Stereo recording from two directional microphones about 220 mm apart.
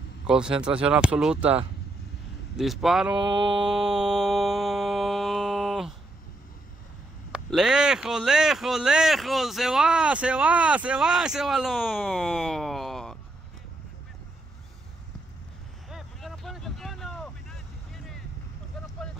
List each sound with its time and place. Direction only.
0.3 s speech: 5° right (ahead or behind)
3.2 s mantra: 20° right (ahead or behind)
3.5 s a sound: 5° right (ahead or behind)
7.3 s speech: 5° right (ahead or behind)
15.9 s vehicle: centre (ahead or behind)